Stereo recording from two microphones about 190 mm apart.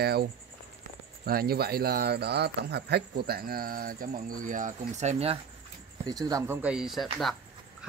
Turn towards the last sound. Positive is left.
turn(degrees=0)  # may be behind; listen again after turning